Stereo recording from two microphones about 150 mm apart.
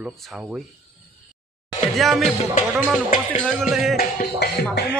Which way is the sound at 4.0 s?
90° left.